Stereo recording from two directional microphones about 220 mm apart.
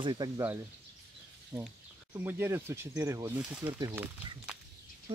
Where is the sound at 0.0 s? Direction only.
20° right (ahead or behind).